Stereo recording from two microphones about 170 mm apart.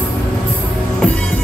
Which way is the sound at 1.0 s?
5° left (ahead or behind).